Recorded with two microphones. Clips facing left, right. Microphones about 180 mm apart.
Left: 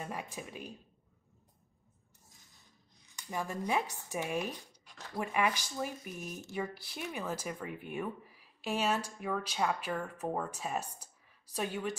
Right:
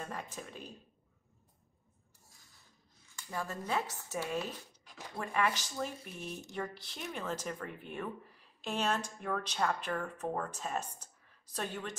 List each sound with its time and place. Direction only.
0.0 s speech: 10° left (ahead or behind)
2.2 s a sound: 20° left (ahead or behind)
3.2 s speech: 15° left (ahead or behind)